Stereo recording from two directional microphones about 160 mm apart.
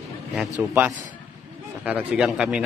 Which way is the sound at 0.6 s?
5° right (ahead or behind).